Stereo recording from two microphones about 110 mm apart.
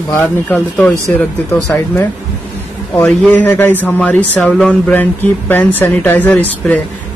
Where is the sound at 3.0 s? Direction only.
15° left (ahead or behind).